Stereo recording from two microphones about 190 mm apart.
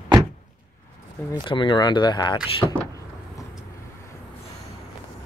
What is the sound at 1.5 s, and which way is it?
Speech, 25° left (ahead or behind).